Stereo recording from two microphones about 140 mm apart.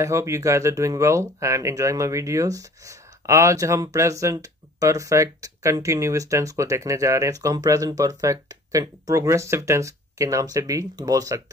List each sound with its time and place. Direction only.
0.0 s speech: 20° right (ahead or behind)